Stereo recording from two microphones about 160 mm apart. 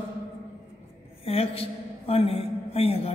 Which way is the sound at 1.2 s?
40° left (ahead or behind).